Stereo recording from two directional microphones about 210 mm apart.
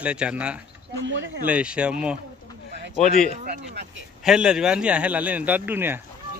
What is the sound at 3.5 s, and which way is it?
Speech, 55° right (ahead or behind).